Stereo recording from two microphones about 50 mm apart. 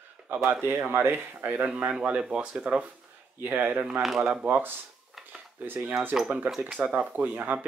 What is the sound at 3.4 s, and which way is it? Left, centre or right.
Speech, right.